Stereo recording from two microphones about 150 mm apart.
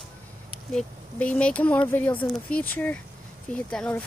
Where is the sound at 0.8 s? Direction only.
10° left (ahead or behind).